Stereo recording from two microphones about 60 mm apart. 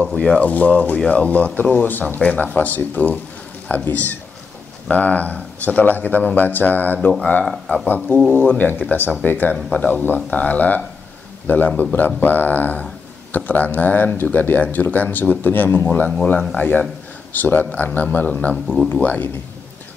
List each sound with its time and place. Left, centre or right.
0.1 s speech: centre
0.4 s speech: left
7.1 s speech: centre
7.4 s speech: centre
7.8 s speech: left